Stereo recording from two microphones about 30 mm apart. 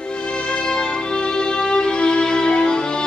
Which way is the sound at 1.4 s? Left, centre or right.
Left.